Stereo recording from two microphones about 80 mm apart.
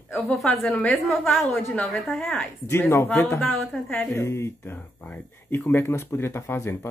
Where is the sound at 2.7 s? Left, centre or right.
Left.